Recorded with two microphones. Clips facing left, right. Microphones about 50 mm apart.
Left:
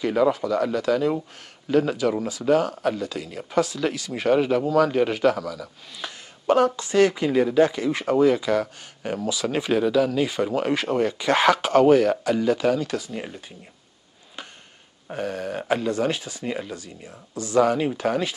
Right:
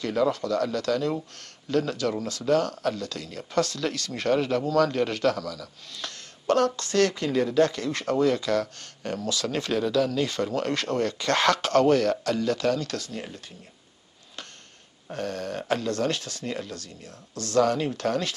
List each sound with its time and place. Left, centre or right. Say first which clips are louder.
0.0 s speech: left 4 dB; centre
15.0 s speech: left 3 dB; centre